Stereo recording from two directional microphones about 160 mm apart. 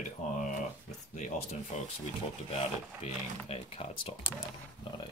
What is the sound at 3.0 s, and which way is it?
Speech, 40° left (ahead or behind).